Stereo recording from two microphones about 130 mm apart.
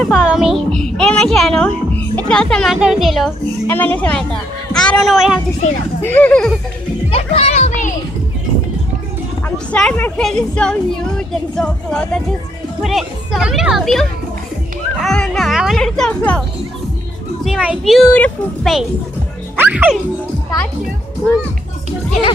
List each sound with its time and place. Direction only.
0.0 s a child's voice: 5° right (ahead or behind)
3.6 s a woman's voice: 15° left (ahead or behind); by 5.4 s centre (ahead or behind)
5.6 s speech: 60° left (ahead or behind)
6.0 s a woman's voice: 10° left (ahead or behind)
7.1 s children playing: 50° left (ahead or behind)
9.7 s a woman's voice: 10° left (ahead or behind)
17.5 s a child's voice: 5° right (ahead or behind)
18.1 s a woman's voice: 10° left (ahead or behind)
19.5 s speech: 15° right (ahead or behind)